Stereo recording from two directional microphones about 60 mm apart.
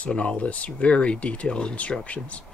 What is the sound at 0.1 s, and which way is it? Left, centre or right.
Speech, centre.